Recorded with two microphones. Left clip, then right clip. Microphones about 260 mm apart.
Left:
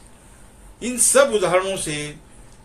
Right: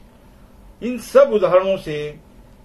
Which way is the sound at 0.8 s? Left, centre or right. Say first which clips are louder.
Right 3 dB; centre.